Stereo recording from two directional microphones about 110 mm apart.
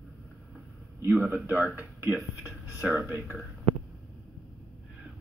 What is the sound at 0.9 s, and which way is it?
Speech, 15° right (ahead or behind).